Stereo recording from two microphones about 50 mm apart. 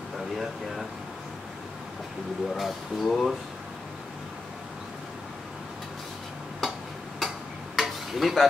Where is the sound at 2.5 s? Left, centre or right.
Centre.